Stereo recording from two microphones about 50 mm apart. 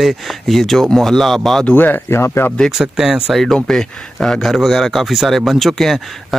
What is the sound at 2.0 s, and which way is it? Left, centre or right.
Speech, left.